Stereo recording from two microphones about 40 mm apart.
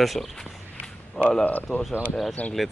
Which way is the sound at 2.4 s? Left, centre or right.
Left.